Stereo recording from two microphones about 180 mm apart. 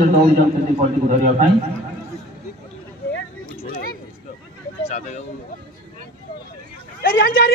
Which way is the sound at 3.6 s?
55° left (ahead or behind).